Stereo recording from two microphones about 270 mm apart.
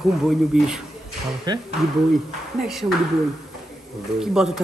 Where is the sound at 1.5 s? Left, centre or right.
Centre.